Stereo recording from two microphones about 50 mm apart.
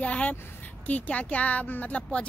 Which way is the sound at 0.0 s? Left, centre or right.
Left.